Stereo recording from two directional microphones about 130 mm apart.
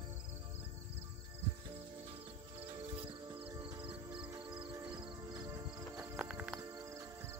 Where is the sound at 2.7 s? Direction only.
45° right (ahead or behind); by 5.6 s 30° right (ahead or behind).